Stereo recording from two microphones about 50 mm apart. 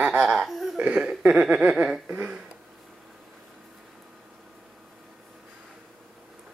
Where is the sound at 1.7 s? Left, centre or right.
Centre.